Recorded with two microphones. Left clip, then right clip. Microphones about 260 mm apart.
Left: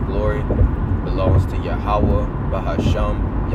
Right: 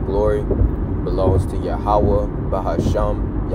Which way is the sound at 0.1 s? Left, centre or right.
Centre.